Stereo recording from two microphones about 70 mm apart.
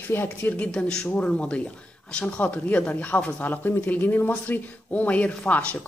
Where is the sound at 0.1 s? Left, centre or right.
Left.